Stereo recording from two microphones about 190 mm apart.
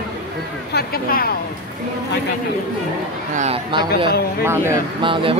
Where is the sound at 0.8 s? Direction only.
50° left (ahead or behind).